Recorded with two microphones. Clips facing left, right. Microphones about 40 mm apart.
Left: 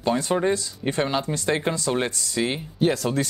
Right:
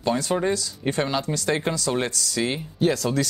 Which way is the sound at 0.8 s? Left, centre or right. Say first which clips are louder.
Right 1 dB; centre.